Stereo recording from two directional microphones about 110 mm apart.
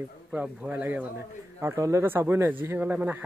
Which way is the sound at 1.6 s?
25° right (ahead or behind).